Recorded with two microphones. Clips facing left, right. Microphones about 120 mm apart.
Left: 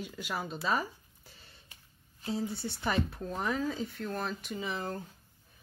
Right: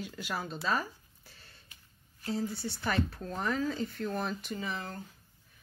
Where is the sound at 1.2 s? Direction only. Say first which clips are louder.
Even; 25° left (ahead or behind).